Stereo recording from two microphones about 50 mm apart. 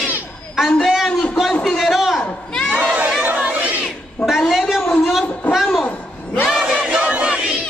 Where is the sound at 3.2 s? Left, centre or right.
Right.